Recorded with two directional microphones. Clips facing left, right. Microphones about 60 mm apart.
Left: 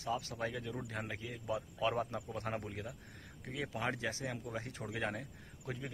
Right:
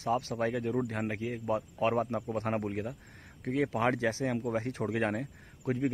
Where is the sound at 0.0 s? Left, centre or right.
Right.